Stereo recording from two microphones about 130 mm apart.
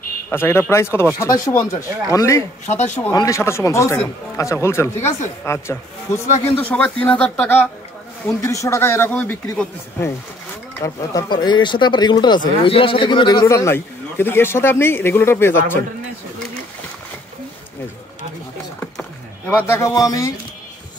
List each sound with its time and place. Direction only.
0.3 s speech: 15° left (ahead or behind)
2.6 s speech: 65° left (ahead or behind)
3.0 s speech: 25° left (ahead or behind)
13.5 s speech: 20° left (ahead or behind)
18.9 s rowboat: 10° left (ahead or behind)
19.6 s speech: 20° left (ahead or behind)